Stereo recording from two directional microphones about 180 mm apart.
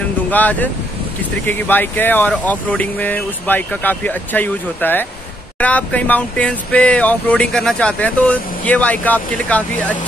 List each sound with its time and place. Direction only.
0.3 s speech: 10° left (ahead or behind)